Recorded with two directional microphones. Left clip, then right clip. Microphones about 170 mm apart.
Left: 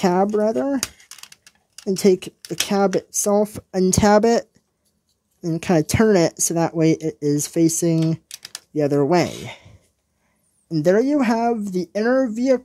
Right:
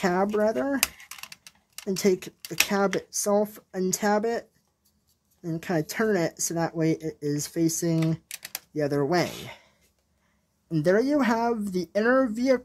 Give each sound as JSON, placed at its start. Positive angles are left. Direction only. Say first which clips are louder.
{"t": 0.0, "sound": "speech", "louder": "left 5 dB", "side_deg": 25}
{"t": 1.9, "sound": "speech", "louder": "left 7 dB", "side_deg": 25}
{"t": 10.7, "sound": "speech", "louder": "left 5 dB", "side_deg": 20}